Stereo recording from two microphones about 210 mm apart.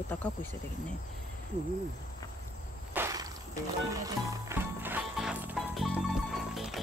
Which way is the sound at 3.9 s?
15° right (ahead or behind).